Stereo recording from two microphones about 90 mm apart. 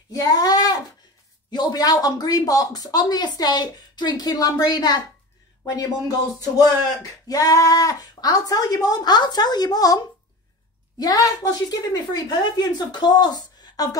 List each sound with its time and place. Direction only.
0.1 s a sound: 40° left (ahead or behind)
1.5 s speech: 50° left (ahead or behind)
11.0 s speech: 45° left (ahead or behind)